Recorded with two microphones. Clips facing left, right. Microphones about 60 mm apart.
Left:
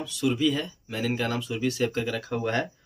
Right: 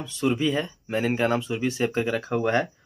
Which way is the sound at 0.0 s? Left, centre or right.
Right.